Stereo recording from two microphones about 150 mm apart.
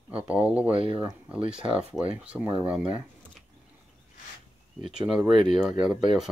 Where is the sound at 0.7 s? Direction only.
40° right (ahead or behind).